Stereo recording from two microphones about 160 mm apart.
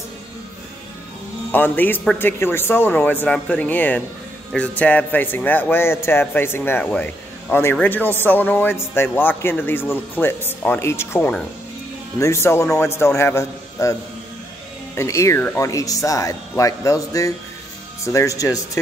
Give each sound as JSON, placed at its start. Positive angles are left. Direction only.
{"t": 1.5, "sound": "a man's voice", "side_deg": 10}
{"t": 15.0, "sound": "speech", "side_deg": 20}